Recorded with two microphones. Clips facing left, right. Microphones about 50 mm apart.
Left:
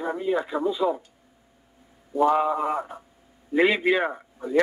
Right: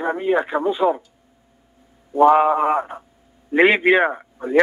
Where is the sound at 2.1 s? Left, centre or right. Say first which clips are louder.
Right 7 dB; right.